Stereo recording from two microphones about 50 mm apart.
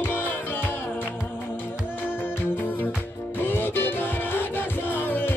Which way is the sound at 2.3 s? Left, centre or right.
Left.